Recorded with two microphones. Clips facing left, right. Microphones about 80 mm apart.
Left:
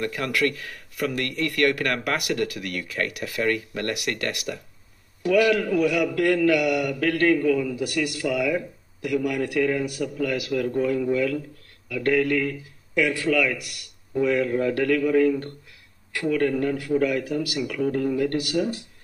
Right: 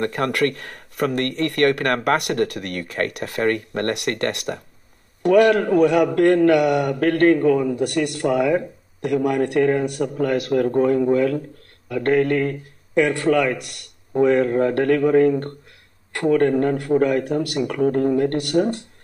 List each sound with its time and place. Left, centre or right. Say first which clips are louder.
0.0 s a man's voice: right 4 dB; right